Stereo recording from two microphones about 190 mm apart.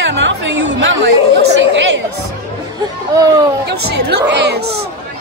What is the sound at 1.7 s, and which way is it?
Music, 75° right (ahead or behind).